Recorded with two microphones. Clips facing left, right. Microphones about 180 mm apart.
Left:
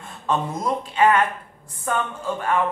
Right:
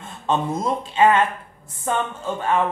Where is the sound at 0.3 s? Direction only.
25° right (ahead or behind).